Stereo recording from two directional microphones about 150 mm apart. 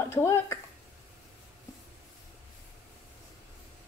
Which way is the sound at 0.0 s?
15° left (ahead or behind).